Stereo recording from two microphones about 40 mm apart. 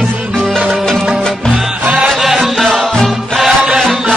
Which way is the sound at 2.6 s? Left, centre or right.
Centre.